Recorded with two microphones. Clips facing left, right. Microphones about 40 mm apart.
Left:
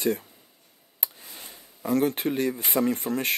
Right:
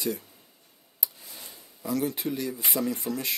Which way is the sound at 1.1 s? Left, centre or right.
Left.